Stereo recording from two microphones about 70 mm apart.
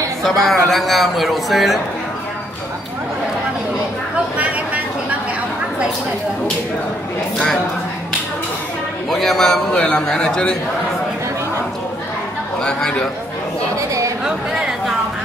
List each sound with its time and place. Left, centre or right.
0.2 s speech: centre
4.4 s a sound: right
9.1 s a man's voice: centre
12.6 s a man's voice: centre
13.7 s a woman's voice: right
14.2 s chatter: centre